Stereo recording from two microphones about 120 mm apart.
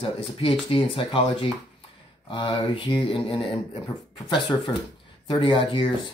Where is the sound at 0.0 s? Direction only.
45° left (ahead or behind).